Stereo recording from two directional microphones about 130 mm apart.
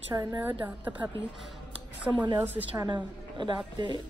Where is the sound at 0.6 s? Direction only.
15° right (ahead or behind).